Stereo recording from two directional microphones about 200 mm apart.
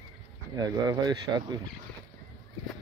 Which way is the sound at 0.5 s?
20° right (ahead or behind).